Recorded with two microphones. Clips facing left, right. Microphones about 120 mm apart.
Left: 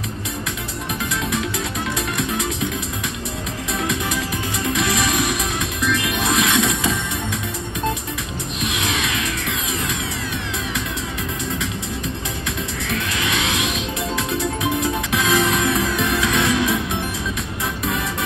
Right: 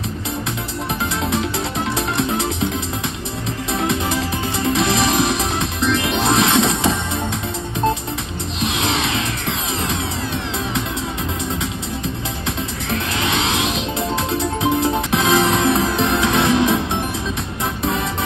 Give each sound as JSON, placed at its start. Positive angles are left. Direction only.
{"t": 2.0, "sound": "music", "side_deg": -25}
{"t": 3.7, "sound": "music", "side_deg": -25}
{"t": 8.5, "sound": "music", "side_deg": -25}
{"t": 12.9, "sound": "music", "side_deg": -25}